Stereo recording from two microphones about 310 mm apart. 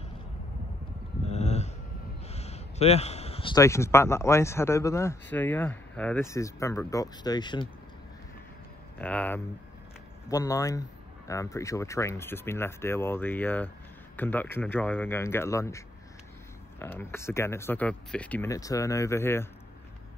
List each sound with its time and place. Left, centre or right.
1.2 s a sound: left
2.2 s a man's voice: left
8.9 s a man's voice: centre
16.8 s a man's voice: centre